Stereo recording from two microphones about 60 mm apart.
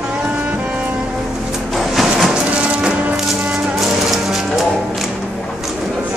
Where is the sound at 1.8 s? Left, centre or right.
Centre.